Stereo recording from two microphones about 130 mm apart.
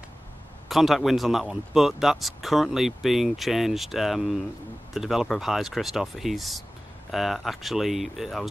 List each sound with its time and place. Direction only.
0.7 s speech: centre (ahead or behind)